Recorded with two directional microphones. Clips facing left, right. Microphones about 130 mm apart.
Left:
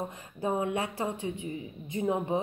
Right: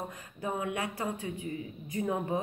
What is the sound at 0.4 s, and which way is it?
Speech, 30° left (ahead or behind).